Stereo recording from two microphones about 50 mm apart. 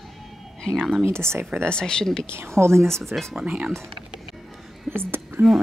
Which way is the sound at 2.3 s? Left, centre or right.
Right.